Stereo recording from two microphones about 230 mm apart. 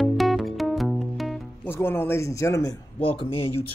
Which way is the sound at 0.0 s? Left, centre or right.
Centre.